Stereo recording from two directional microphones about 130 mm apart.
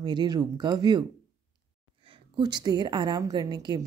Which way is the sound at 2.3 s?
35° right (ahead or behind).